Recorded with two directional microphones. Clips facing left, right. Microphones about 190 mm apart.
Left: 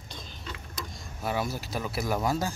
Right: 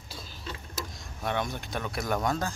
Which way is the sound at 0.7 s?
Centre (ahead or behind).